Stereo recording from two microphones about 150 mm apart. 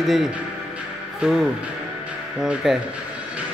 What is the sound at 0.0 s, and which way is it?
Speech, centre (ahead or behind).